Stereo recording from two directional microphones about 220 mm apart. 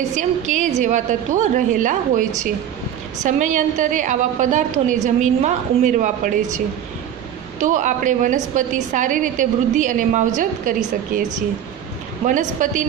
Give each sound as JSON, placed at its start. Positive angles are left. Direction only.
{"t": 0.1, "sound": "a woman's voice", "side_deg": -35}
{"t": 7.5, "sound": "a woman's voice", "side_deg": -35}
{"t": 12.3, "sound": "a woman's voice", "side_deg": -35}